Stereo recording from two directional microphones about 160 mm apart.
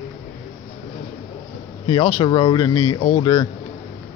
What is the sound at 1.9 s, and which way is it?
Speech, 30° left (ahead or behind).